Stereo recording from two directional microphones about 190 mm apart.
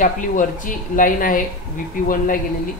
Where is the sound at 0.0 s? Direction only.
45° left (ahead or behind).